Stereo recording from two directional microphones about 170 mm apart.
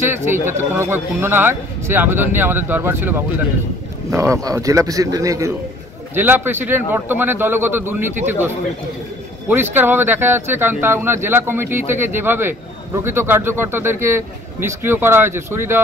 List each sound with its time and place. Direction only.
0.1 s a man's voice: 15° right (ahead or behind)
9.5 s a man's voice: 10° right (ahead or behind)